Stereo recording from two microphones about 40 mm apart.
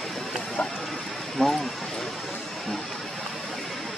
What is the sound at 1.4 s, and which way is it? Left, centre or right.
Speech, centre.